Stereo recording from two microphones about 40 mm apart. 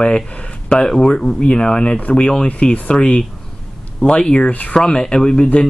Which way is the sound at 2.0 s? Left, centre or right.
Left.